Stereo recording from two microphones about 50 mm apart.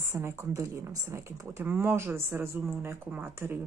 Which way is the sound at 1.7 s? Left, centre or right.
Right.